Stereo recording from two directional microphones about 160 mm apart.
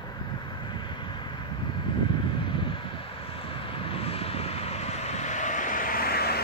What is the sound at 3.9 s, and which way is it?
Vehicle, 35° left (ahead or behind).